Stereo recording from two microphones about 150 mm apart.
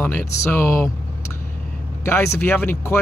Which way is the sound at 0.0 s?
10° left (ahead or behind).